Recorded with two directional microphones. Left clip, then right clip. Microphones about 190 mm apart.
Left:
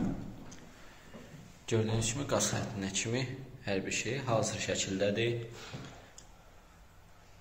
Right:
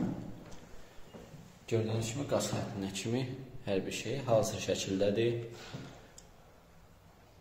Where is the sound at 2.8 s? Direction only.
15° right (ahead or behind); by 5.3 s 35° right (ahead or behind).